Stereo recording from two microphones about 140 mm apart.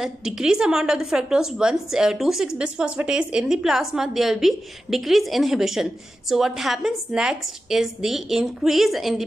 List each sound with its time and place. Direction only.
0.0 s a woman's voice: 5° right (ahead or behind)